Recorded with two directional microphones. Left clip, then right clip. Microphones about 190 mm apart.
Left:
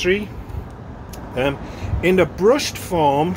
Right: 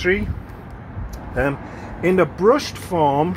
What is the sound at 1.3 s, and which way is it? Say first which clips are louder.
Speech: even; 5° right (ahead or behind).